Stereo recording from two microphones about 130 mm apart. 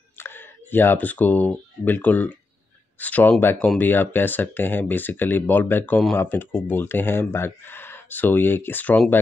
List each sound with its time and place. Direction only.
0.2 s speech: 15° left (ahead or behind)